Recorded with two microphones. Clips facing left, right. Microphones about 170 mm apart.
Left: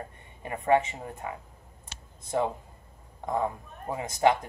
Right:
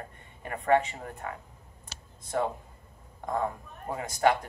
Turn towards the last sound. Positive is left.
turn(degrees=20)  # may be behind; listen again after turning